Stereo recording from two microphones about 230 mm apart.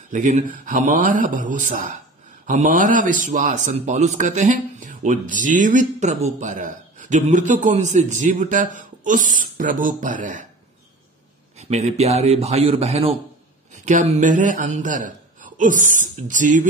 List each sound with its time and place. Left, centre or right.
0.1 s speech: right
11.7 s speech: right